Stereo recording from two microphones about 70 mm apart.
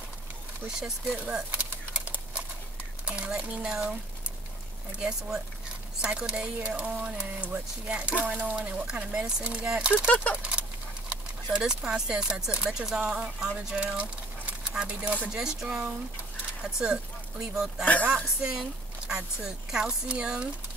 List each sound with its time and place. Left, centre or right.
0.7 s speech: centre
1.2 s a sound: centre
3.1 s speech: centre
4.9 s speech: centre
7.3 s speech: centre
9.9 s speech: left
11.5 s speech: centre